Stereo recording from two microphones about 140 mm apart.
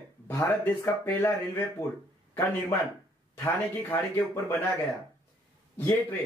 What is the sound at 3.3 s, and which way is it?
Speech, 20° left (ahead or behind).